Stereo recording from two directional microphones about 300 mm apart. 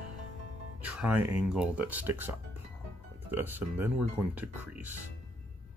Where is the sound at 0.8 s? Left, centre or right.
Centre.